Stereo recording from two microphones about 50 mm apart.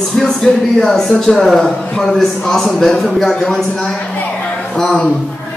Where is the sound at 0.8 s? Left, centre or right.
Centre.